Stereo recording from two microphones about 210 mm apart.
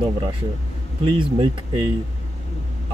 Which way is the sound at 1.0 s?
25° right (ahead or behind).